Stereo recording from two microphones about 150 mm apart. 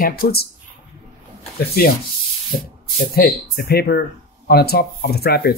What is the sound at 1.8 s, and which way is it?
Speech, 85° left.